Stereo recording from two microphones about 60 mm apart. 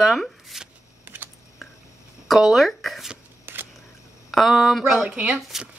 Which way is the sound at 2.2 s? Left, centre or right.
Centre.